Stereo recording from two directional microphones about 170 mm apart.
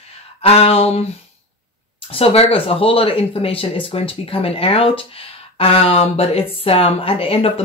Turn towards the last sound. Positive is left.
turn(degrees=35)  # may be behind; listen again after turning